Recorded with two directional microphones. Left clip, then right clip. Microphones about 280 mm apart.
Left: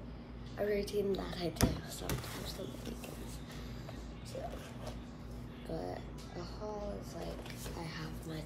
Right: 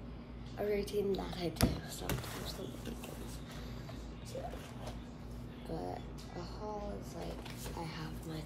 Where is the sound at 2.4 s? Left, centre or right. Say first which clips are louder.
Even; centre.